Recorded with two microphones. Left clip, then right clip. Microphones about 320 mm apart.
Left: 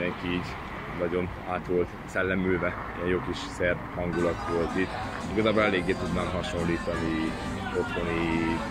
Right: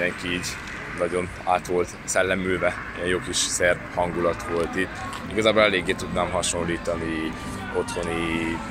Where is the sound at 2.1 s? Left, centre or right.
Centre.